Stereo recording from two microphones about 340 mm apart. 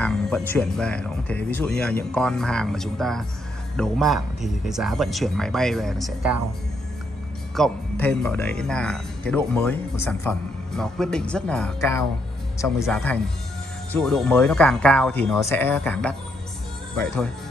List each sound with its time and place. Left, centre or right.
0.0 s speech: centre
7.5 s speech: centre